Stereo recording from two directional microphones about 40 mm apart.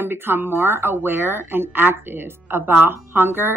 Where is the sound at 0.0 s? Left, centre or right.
Right.